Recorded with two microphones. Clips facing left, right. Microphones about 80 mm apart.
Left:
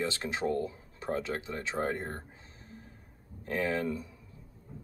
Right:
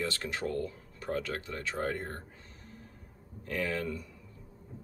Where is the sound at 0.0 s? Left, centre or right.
Left.